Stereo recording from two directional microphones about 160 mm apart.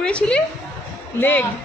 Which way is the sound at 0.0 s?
5° left (ahead or behind).